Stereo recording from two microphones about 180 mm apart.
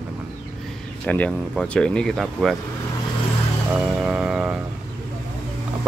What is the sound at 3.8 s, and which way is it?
Music, 5° right (ahead or behind).